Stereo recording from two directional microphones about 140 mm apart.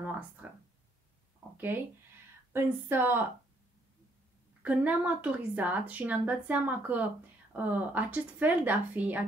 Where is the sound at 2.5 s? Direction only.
15° right (ahead or behind).